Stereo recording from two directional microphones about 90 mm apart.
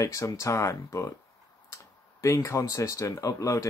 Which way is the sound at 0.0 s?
35° left (ahead or behind).